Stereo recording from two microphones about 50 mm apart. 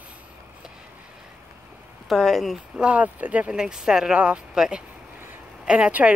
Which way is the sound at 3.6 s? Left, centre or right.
Centre.